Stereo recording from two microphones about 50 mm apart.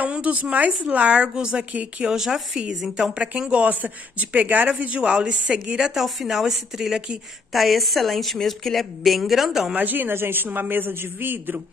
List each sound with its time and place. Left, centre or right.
0.0 s a woman's voice: right
1.7 s speech: right
2.0 s a woman's voice: centre
5.9 s a woman's voice: centre
9.8 s a man's voice: right